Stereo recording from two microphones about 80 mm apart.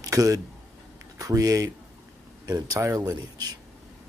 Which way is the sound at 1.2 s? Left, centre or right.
Right.